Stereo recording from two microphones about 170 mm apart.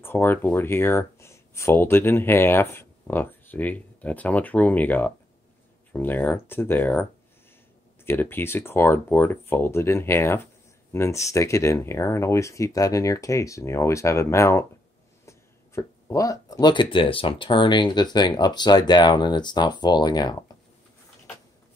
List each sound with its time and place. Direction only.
0.0 s speech: 15° left (ahead or behind)